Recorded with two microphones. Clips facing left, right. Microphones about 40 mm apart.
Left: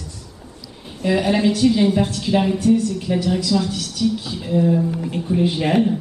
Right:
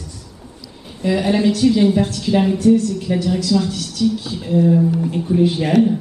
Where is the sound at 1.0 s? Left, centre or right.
Centre.